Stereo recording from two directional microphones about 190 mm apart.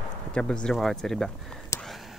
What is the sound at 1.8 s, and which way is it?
Whispering, centre (ahead or behind).